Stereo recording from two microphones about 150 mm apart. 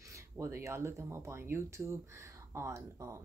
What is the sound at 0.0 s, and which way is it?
Speech, 20° right (ahead or behind).